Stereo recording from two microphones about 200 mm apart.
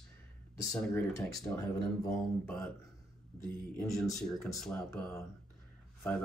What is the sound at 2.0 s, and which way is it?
Speech, 5° left (ahead or behind).